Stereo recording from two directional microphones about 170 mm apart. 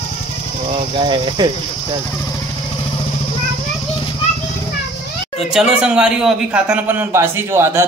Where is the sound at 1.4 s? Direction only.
25° right (ahead or behind).